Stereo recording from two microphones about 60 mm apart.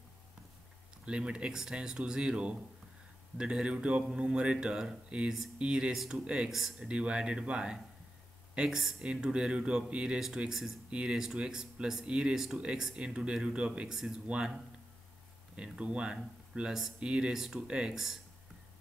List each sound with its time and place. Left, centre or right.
1.0 s speech: centre
6.5 s speech: centre
6.9 s speech: centre
9.0 s speech: centre
13.9 s speech: centre
17.9 s speech: centre